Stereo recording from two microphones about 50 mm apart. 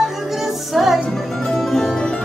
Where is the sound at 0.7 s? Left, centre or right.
Centre.